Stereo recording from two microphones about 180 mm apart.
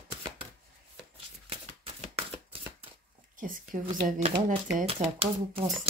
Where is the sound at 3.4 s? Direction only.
50° right (ahead or behind).